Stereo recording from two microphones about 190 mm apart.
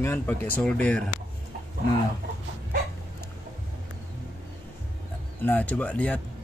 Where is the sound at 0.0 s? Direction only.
10° left (ahead or behind).